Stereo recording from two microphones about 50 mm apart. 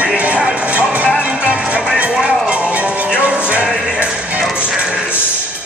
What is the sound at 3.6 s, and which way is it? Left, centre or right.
Music, centre.